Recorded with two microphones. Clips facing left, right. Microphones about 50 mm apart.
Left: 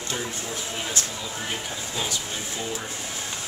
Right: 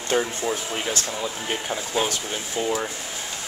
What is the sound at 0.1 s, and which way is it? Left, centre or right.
Speech, right.